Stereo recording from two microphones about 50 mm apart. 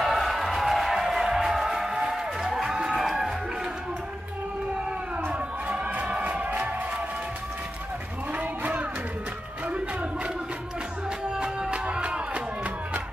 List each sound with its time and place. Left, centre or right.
0.0 s music: centre
5.9 s music: right
8.3 s a sound: right
11.3 s music: centre